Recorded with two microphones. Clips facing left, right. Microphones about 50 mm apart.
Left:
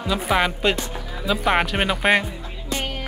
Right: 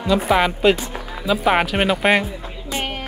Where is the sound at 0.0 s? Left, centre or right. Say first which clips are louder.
Right 4 dB; centre.